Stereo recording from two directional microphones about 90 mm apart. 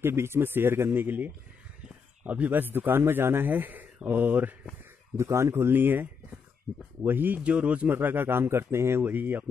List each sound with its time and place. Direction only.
0.0 s speech: 30° right (ahead or behind)
5.1 s speech: 30° right (ahead or behind)
7.1 s speech: 20° right (ahead or behind)